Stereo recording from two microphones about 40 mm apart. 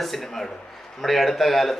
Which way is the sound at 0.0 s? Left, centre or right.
Centre.